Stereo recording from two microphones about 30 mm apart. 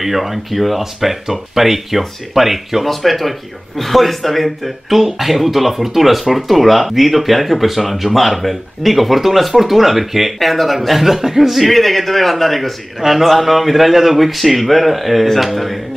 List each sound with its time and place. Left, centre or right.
0.0 s speech: centre
1.2 s speech: centre